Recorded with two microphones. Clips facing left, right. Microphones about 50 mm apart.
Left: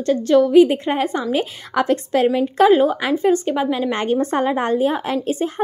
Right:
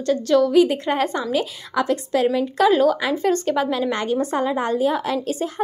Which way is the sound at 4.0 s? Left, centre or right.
Left.